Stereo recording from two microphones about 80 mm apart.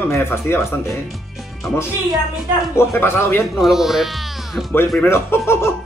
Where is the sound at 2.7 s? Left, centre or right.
Left.